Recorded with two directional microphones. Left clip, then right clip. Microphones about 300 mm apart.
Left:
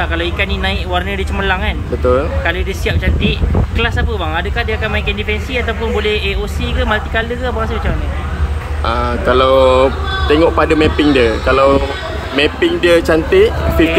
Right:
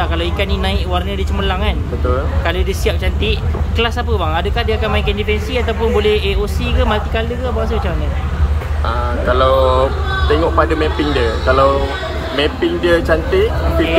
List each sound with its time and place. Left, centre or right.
0.0 s speech: centre
8.8 s speech: left